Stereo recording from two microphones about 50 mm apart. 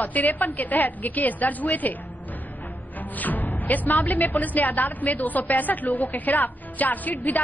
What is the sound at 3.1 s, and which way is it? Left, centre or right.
A woman's voice, left.